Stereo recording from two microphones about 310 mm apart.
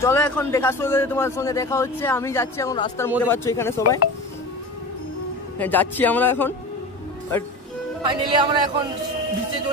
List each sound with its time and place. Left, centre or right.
0.0 s a man's voice: centre
5.6 s speech: centre
8.0 s speech: centre